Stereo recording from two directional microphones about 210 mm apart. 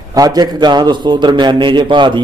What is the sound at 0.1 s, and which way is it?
A man's voice, 20° right (ahead or behind).